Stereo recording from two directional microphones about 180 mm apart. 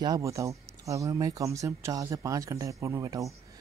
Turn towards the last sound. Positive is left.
turn(degrees=-20)  # may be behind; listen again after turning